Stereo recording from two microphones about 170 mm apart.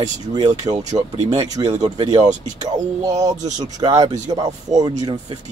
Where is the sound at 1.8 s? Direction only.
25° right (ahead or behind).